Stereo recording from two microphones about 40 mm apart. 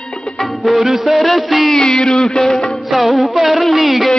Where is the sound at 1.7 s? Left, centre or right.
Centre.